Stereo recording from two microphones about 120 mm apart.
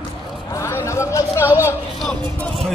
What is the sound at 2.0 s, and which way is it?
Music, 10° left (ahead or behind).